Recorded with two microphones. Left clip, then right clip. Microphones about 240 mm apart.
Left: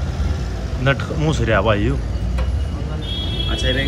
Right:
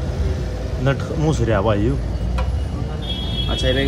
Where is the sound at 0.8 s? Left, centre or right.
Centre.